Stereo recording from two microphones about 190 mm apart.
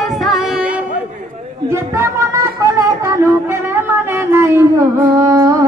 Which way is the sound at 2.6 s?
15° right (ahead or behind).